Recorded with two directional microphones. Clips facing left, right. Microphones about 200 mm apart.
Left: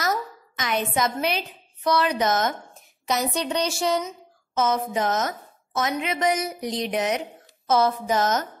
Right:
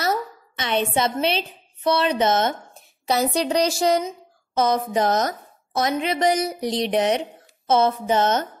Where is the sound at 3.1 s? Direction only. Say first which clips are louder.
Right 4 dB; 35° right (ahead or behind).